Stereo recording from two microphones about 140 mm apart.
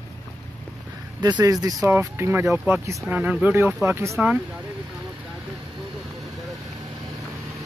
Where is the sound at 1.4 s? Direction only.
25° right (ahead or behind).